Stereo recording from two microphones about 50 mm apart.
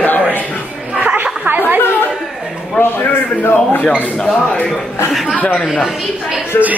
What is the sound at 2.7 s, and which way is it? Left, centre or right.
A man's voice, left.